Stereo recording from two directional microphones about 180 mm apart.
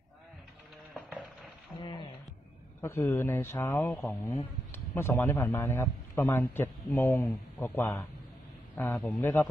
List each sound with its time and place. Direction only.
1.8 s a sound: 25° left (ahead or behind)
2.8 s speech: 15° left (ahead or behind)
4.2 s a man's voice: 20° left (ahead or behind); by 9.2 s 5° left (ahead or behind)
9.2 s speech: 15° left (ahead or behind)